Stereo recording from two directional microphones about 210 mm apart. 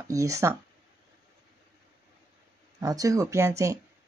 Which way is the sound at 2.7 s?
15° right (ahead or behind).